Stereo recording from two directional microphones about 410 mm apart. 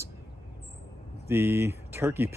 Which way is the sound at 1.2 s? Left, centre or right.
Centre.